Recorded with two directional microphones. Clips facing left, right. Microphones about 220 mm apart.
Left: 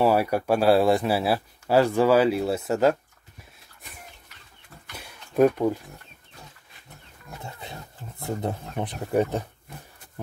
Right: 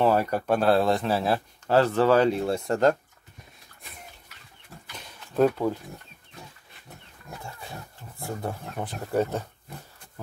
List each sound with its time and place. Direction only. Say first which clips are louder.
0.0 s speech: left 1 dB; 10° left (ahead or behind)
4.9 s a sound: left 2 dB; 10° left (ahead or behind)
8.2 s speech: left 3 dB; 20° left (ahead or behind)